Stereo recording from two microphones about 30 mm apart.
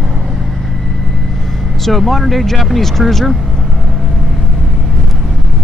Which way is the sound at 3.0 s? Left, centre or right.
Right.